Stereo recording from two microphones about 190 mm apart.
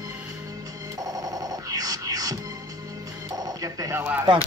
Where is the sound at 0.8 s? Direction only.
20° right (ahead or behind).